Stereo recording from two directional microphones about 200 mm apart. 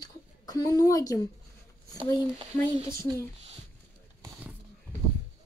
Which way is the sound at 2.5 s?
15° left (ahead or behind).